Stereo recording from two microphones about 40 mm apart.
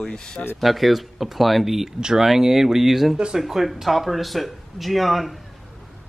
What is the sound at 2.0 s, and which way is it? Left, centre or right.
Speech, centre.